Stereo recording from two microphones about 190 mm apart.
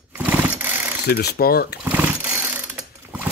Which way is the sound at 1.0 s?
60° left (ahead or behind).